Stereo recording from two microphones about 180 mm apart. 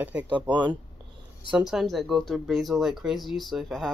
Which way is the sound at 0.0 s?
10° right (ahead or behind).